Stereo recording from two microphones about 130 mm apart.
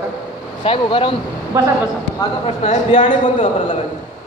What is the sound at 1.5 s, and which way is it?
Speech, 25° right (ahead or behind).